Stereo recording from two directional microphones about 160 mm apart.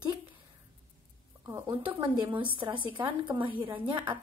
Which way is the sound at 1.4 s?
20° right (ahead or behind).